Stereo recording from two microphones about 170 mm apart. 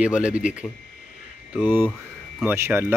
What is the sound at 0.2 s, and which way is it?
Speech, 5° right (ahead or behind).